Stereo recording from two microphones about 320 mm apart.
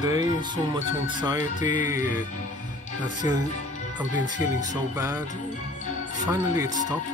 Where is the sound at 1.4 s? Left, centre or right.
Left.